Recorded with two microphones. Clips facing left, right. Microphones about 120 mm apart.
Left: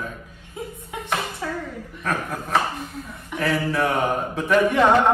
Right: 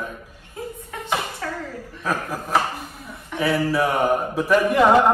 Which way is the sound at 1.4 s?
15° left (ahead or behind).